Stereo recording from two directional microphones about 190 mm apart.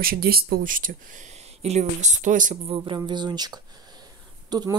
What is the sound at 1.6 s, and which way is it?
Speech, 35° right (ahead or behind).